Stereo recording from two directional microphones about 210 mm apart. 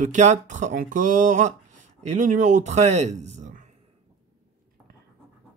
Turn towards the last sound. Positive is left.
turn(degrees=-35)  # may be behind; listen again after turning